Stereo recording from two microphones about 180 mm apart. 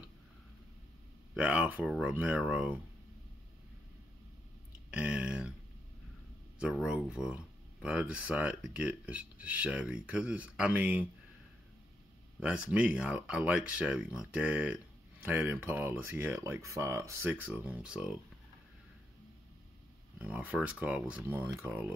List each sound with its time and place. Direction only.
1.3 s speech: 5° right (ahead or behind)
4.9 s a sound: 5° right (ahead or behind)
6.6 s speech: 5° right (ahead or behind)
12.4 s speech: 5° right (ahead or behind)
20.2 s speech: 10° right (ahead or behind)